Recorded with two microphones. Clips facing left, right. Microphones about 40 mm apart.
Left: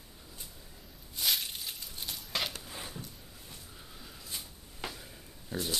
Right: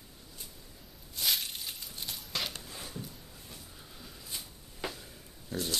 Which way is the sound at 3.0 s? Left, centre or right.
Centre.